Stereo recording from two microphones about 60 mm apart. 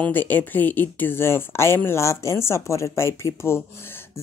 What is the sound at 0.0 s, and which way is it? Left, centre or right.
Speech, left.